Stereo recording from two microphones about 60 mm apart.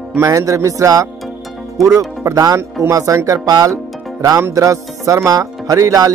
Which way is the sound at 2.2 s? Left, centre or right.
Right.